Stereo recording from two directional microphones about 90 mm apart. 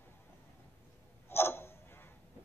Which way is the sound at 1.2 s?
25° left (ahead or behind).